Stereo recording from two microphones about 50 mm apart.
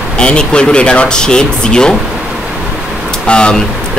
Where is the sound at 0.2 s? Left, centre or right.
Centre.